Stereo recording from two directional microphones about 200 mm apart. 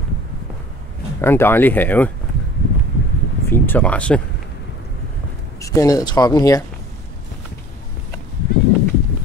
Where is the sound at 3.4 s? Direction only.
10° left (ahead or behind).